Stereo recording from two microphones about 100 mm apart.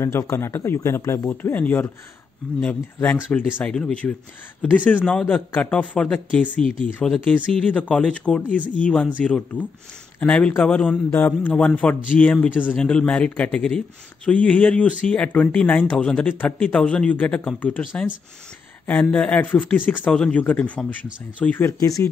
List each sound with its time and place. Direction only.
0.3 s speech: 25° left (ahead or behind)
1.5 s speech: 20° left (ahead or behind)
21.6 s speech: 35° left (ahead or behind)